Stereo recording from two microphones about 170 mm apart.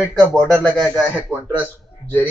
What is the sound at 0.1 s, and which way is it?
A man's voice, centre (ahead or behind).